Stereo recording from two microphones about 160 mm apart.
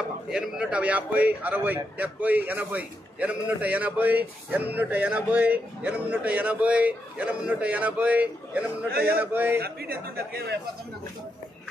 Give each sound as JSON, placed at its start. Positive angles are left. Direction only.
{"t": 0.3, "sound": "a man's voice", "side_deg": -5}
{"t": 9.6, "sound": "a man's voice", "side_deg": -75}